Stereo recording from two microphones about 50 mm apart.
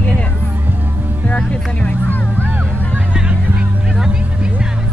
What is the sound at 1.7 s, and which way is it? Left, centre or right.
Music, left.